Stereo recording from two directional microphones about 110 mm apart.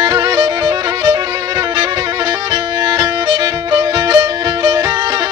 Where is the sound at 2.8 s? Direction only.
35° right (ahead or behind).